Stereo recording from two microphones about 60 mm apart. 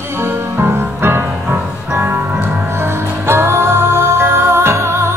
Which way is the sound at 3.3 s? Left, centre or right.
Right.